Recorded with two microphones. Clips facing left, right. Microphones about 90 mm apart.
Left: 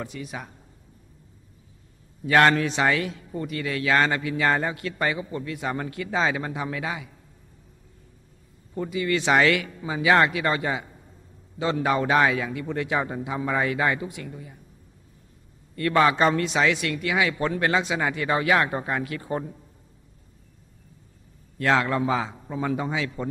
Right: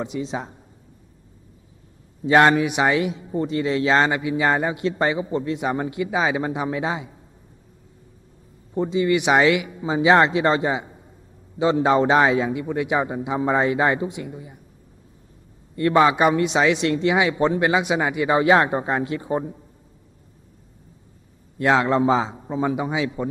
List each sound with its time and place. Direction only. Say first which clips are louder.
0.0 s a man's voice: right 7 dB; 20° right (ahead or behind)
2.2 s a man's voice: right 3 dB; 20° right (ahead or behind)
8.7 s a man's voice: right 6 dB; 25° right (ahead or behind)
15.7 s a man's voice: right 4 dB; 20° right (ahead or behind)
21.5 s a man's voice: right 4 dB; 20° right (ahead or behind)